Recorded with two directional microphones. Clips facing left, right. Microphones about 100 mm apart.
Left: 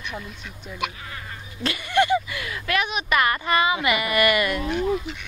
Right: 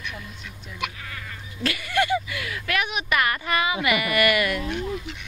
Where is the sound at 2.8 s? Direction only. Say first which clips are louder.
Even; 15° right (ahead or behind).